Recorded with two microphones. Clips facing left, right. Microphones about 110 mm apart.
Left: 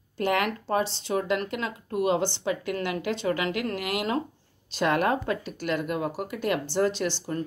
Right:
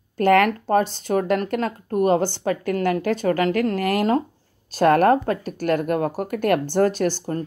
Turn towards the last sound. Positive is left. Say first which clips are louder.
# right 6 dB
turn(degrees=-45)  # may be behind; listen again after turning